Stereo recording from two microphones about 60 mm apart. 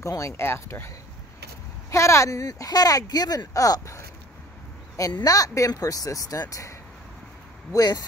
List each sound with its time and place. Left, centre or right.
0.1 s speech: left
0.5 s speech: left
1.9 s speech: left
6.5 s speech: left
7.7 s speech: left